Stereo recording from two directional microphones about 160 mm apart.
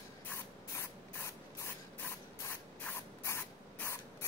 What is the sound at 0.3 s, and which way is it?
Spray, 15° left (ahead or behind).